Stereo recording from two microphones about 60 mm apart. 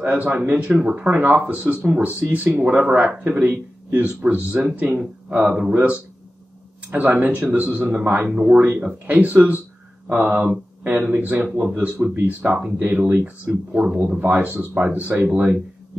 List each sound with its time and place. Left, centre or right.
0.0 s a man's voice: right
5.5 s speech: centre
6.9 s a man's voice: right
8.3 s a man's voice: centre